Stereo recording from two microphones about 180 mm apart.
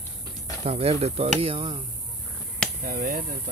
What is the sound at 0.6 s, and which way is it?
Speech, 35° right (ahead or behind).